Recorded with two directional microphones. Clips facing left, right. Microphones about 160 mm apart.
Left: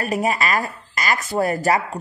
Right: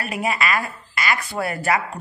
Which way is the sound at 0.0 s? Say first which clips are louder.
Left 3 dB; 40° left (ahead or behind).